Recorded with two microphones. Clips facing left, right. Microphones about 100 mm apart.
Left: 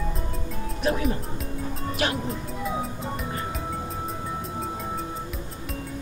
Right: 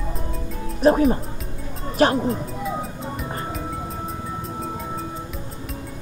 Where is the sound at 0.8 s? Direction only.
40° right (ahead or behind).